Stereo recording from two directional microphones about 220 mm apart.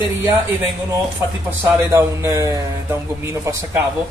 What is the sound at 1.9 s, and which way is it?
Speech, 10° right (ahead or behind).